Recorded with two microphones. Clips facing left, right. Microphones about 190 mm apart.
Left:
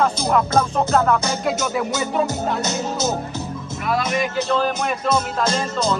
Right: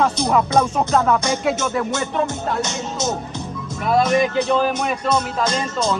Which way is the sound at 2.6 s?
35° left (ahead or behind).